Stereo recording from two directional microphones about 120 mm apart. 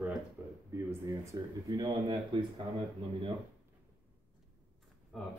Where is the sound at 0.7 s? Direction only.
25° right (ahead or behind).